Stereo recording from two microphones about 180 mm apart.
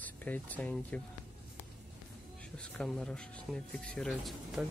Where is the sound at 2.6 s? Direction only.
5° left (ahead or behind).